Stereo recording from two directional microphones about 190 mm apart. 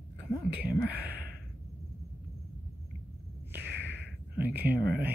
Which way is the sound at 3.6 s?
65° right (ahead or behind).